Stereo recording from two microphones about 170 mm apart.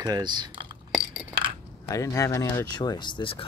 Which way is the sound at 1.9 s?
20° left (ahead or behind).